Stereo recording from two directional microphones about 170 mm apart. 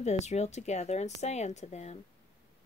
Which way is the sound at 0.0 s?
40° left (ahead or behind).